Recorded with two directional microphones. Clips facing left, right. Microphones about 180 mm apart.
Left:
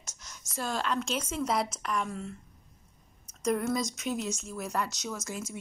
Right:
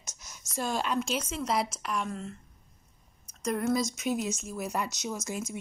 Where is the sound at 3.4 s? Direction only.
Centre (ahead or behind).